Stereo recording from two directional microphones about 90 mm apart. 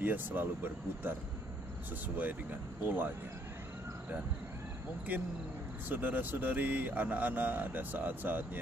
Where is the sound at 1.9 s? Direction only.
20° right (ahead or behind).